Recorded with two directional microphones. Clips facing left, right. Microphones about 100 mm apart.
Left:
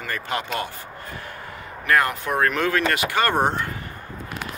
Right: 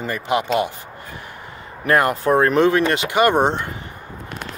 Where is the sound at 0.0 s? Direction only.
15° right (ahead or behind).